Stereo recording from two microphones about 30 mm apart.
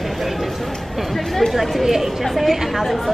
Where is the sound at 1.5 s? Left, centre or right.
Centre.